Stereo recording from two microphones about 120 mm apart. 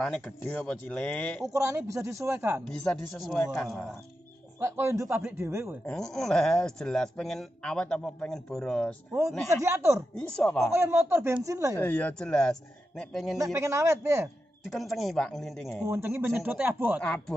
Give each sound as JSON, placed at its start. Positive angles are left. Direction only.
{"t": 0.0, "sound": "speech", "side_deg": 5}
{"t": 1.5, "sound": "speech", "side_deg": -25}
{"t": 2.6, "sound": "a man's voice", "side_deg": 5}
{"t": 4.6, "sound": "speech", "side_deg": -20}
{"t": 5.9, "sound": "a man's voice", "side_deg": 5}
{"t": 9.5, "sound": "speech", "side_deg": -25}
{"t": 10.1, "sound": "speech", "side_deg": 10}
{"t": 10.7, "sound": "speech", "side_deg": -20}
{"t": 11.7, "sound": "speech", "side_deg": 15}
{"t": 13.4, "sound": "speech", "side_deg": -25}
{"t": 14.7, "sound": "a man's voice", "side_deg": 0}
{"t": 15.9, "sound": "speech", "side_deg": -20}